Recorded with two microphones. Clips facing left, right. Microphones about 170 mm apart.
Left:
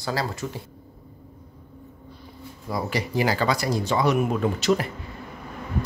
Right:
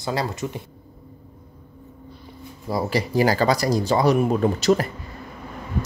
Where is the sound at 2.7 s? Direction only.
30° right (ahead or behind).